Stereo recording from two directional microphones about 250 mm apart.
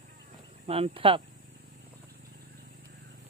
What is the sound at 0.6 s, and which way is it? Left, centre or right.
Speech, right.